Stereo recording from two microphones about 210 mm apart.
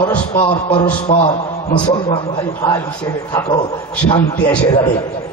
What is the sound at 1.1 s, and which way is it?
Speech, 25° left (ahead or behind).